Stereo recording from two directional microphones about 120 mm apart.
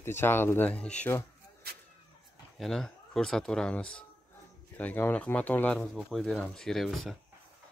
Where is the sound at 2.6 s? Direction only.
5° left (ahead or behind).